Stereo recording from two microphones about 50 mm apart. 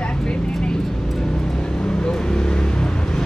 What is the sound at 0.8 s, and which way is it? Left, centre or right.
Vehicle, centre.